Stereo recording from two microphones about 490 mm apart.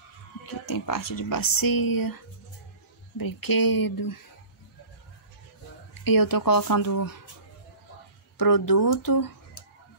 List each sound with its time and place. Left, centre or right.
0.5 s speech: left
3.2 s speech: left
6.0 s speech: left
8.4 s speech: left